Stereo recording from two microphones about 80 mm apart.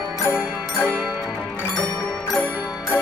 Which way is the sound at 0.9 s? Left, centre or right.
Centre.